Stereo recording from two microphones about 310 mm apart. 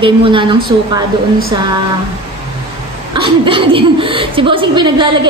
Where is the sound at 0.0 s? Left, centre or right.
Centre.